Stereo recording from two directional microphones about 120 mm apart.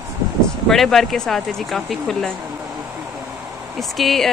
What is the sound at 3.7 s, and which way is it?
Speech, centre (ahead or behind).